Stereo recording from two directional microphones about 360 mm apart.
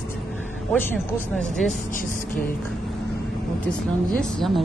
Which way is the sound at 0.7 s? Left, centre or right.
Centre.